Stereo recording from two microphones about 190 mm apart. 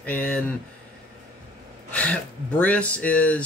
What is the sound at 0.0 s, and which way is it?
Speech, 10° left (ahead or behind).